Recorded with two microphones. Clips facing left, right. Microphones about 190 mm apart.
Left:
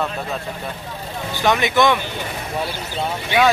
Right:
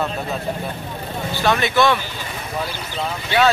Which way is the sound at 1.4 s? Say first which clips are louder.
Left 1 dB; 15° left (ahead or behind).